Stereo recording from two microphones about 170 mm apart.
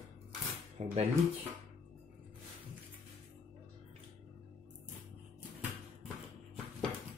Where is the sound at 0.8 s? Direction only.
40° right (ahead or behind).